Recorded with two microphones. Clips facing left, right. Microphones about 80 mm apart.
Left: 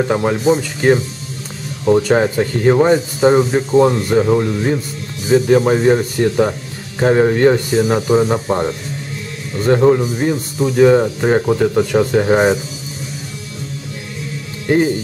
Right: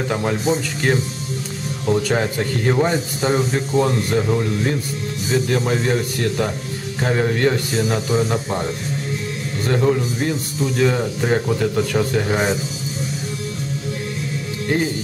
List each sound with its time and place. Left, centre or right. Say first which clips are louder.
0.1 s speech: left 5 dB; left
1.9 s speech: left 7 dB; left
7.7 s speech: left 6 dB; centre
8.1 s speech: left 6 dB; left